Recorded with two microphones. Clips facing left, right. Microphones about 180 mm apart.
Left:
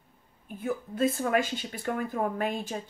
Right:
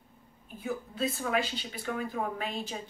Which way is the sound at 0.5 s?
50° left (ahead or behind).